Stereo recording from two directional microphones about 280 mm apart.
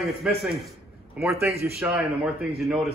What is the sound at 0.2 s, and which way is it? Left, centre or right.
A man's voice, centre.